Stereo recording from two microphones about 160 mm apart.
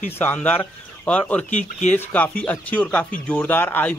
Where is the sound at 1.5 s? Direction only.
45° left (ahead or behind).